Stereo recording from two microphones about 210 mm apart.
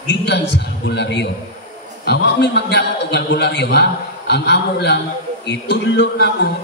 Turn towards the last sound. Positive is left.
turn(degrees=55)  # may be behind; listen again after turning